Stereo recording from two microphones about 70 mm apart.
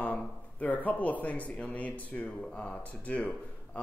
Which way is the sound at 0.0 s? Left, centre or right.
Centre.